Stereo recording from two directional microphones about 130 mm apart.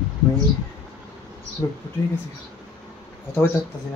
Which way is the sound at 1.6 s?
25° left (ahead or behind).